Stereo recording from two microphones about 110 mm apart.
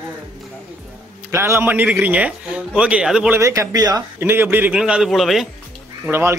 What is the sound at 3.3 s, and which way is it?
Speech, 30° right (ahead or behind).